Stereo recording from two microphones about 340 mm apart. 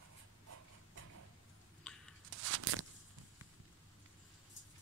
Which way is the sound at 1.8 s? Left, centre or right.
Centre.